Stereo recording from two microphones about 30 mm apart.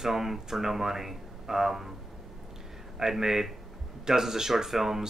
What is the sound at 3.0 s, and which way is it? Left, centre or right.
Speech, centre.